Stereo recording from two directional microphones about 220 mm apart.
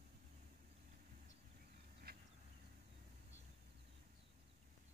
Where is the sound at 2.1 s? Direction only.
45° right (ahead or behind).